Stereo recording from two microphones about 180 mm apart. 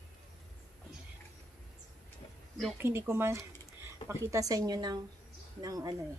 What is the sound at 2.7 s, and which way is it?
Speech, 15° right (ahead or behind).